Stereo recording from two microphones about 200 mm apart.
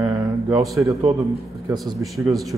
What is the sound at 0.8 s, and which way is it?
Speech, 15° right (ahead or behind).